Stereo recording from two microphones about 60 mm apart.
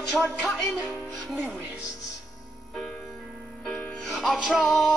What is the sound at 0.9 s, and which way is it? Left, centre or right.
Speech, centre.